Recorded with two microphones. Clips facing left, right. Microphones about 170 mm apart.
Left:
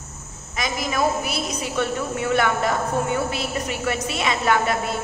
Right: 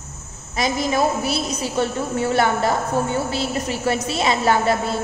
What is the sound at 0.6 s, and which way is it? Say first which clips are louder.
A woman's voice: right 4 dB; 30° right (ahead or behind).